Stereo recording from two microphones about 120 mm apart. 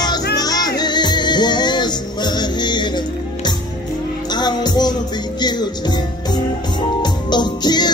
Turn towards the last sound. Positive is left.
turn(degrees=35)  # may be behind; listen again after turning